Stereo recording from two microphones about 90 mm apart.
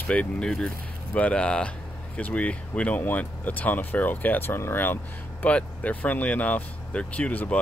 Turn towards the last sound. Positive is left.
turn(degrees=15)  # may be behind; listen again after turning